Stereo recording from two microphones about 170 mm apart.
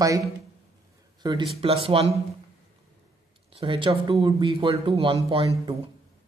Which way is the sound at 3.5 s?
30° right (ahead or behind).